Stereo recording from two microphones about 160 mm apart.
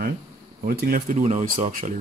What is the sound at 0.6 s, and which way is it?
Speech, 70° right (ahead or behind).